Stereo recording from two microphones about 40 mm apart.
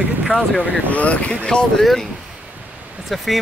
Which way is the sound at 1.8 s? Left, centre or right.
Centre.